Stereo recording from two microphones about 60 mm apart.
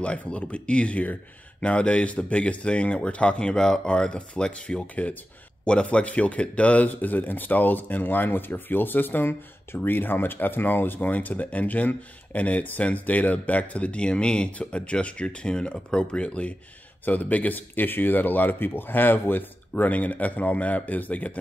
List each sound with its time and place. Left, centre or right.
0.0 s speech: centre